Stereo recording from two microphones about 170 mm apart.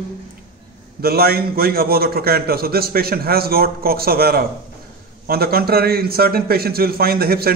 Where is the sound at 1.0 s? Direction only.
65° right (ahead or behind).